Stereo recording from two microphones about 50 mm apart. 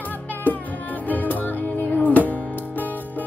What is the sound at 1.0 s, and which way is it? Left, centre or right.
Music, left.